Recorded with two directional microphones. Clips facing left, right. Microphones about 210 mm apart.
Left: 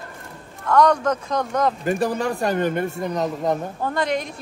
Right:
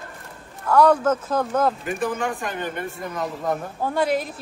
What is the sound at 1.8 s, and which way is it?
Speech, 40° left (ahead or behind).